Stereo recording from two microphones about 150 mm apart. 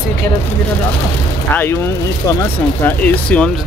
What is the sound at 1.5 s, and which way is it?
Speech, 15° left (ahead or behind).